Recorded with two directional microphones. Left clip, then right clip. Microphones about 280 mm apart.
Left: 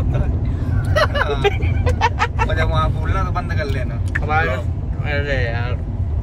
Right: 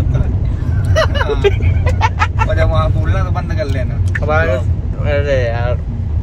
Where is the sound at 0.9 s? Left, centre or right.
Centre.